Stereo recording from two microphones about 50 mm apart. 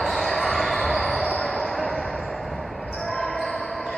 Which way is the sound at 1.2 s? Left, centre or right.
Left.